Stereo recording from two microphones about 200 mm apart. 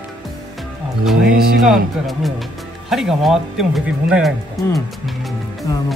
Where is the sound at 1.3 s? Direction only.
50° right (ahead or behind).